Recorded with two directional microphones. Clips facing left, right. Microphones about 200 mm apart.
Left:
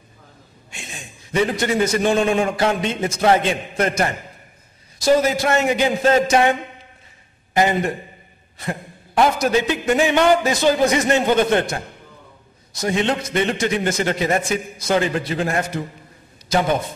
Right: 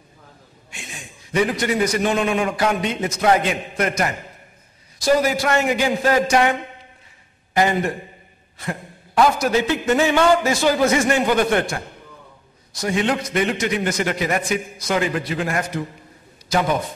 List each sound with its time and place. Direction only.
0.7 s a man's voice: 25° left (ahead or behind)
7.5 s a man's voice: 20° left (ahead or behind)
12.8 s a man's voice: 25° left (ahead or behind)